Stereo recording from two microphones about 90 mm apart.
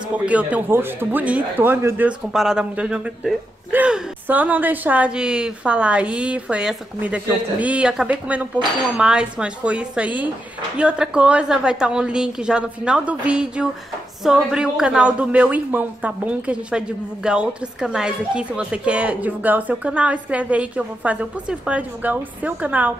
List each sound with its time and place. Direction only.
0.2 s a woman's voice: 15° right (ahead or behind)
2.3 s speech: 5° right (ahead or behind)
2.7 s a woman's voice: 15° right (ahead or behind)